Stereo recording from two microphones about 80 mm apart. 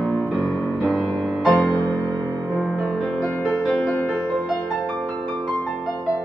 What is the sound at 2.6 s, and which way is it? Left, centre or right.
Music, centre.